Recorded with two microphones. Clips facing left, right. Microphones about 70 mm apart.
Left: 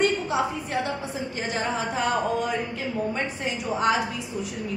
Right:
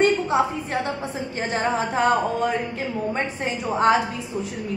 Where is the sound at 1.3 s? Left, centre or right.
Right.